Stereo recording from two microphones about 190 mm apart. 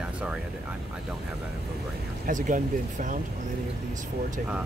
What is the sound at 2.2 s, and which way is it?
Speech, 45° right (ahead or behind).